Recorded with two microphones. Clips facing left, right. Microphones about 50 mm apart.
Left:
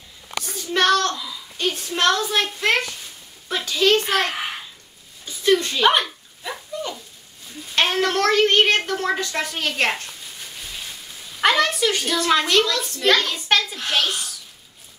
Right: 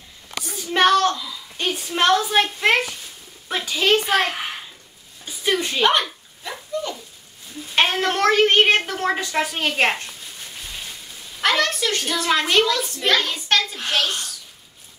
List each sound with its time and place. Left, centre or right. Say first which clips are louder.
0.7 s child singing: right 2 dB; centre
1.6 s a woman's voice: even; centre
5.2 s a sound: left 4 dB; centre
5.9 s a sound: left 3 dB; centre
7.7 s a woman's voice: even; centre
11.4 s a woman's voice: left 2 dB; centre
12.1 s a woman's voice: left 1 dB; centre
12.4 s a woman's voice: right 1 dB; centre
13.9 s a woman's voice: even; centre